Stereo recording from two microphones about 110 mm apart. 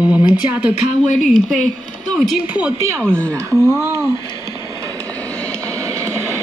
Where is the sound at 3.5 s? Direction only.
Centre (ahead or behind).